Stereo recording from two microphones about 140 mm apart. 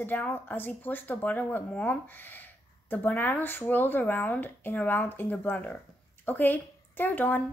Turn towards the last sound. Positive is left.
turn(degrees=10)  # may be behind; listen again after turning